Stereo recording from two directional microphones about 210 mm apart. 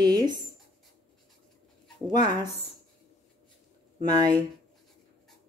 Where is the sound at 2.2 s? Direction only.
20° right (ahead or behind).